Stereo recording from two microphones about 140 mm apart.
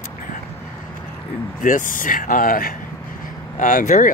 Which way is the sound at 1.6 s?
75° left (ahead or behind).